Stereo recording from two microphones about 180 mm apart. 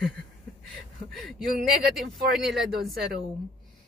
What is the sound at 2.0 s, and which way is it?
Speech, centre (ahead or behind).